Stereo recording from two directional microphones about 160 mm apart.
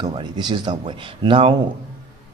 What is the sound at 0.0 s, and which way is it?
A man's voice, 25° right (ahead or behind).